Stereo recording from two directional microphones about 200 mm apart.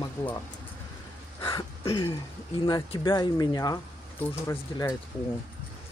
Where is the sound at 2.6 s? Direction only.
20° left (ahead or behind).